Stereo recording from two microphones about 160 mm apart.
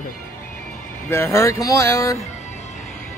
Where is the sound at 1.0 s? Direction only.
15° left (ahead or behind).